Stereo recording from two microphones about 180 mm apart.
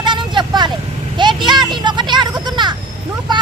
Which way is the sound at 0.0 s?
25° right (ahead or behind).